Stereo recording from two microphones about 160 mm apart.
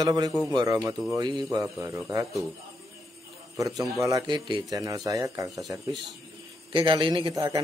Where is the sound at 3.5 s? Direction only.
20° right (ahead or behind).